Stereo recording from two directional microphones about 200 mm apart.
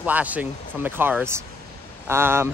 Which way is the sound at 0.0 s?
10° right (ahead or behind).